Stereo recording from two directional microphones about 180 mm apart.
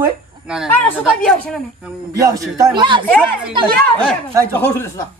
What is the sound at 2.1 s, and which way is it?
Speech, 20° right (ahead or behind).